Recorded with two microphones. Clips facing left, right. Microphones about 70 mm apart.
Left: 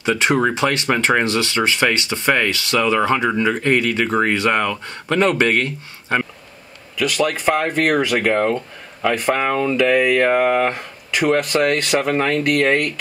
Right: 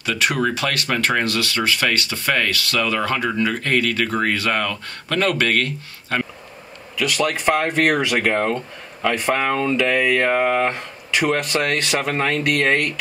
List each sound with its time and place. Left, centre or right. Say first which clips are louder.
0.0 s speech: left 4 dB; left
7.0 s speech: left 2 dB; centre